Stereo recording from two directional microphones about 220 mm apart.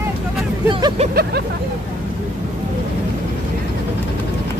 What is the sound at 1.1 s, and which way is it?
Speech, 45° right (ahead or behind).